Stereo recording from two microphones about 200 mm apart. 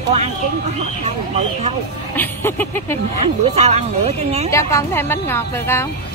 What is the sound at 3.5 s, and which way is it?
Speech, 35° right (ahead or behind).